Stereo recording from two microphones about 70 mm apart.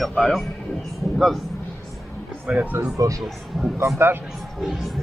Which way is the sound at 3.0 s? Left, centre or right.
Right.